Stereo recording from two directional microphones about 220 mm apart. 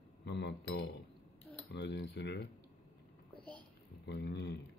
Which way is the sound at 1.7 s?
50° left (ahead or behind).